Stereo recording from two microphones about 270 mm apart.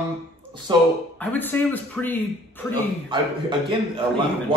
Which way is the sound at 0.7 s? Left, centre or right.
Centre.